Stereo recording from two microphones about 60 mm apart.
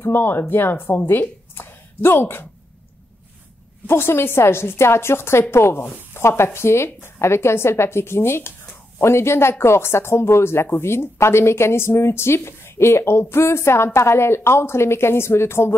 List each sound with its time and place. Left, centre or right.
0.0 s speech: left
3.8 s speech: left